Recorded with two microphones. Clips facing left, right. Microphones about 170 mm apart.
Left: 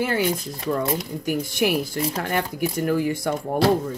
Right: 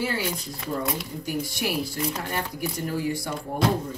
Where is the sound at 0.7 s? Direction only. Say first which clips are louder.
Left 5 dB; 60° left (ahead or behind).